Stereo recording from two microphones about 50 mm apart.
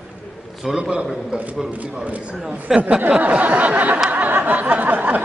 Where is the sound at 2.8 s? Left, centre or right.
Right.